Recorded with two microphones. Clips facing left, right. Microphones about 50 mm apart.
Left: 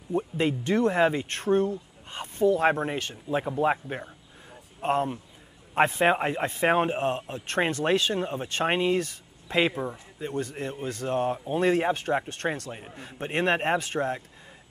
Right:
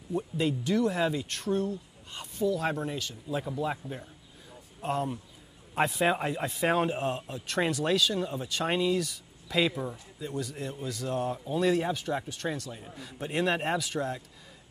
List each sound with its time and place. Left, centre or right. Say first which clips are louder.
0.1 s speech: left 3 dB; left
3.9 s a sound: left 5 dB; left
5.8 s speech: left 4 dB; left